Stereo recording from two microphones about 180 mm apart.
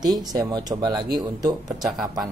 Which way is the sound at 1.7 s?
Centre (ahead or behind).